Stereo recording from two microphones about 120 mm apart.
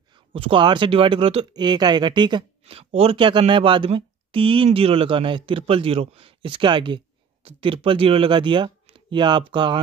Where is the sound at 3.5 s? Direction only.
45° right (ahead or behind).